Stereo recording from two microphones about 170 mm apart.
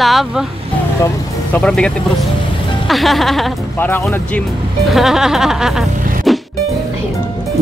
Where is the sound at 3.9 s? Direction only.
10° left (ahead or behind).